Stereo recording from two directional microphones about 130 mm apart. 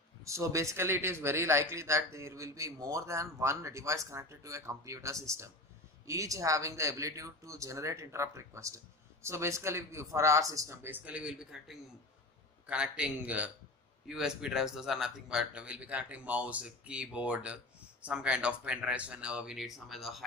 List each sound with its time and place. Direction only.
0.2 s speech: 25° right (ahead or behind); by 20.2 s centre (ahead or behind)